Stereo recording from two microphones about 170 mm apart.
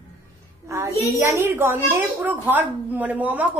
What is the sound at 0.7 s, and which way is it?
A child's voice, 15° right (ahead or behind).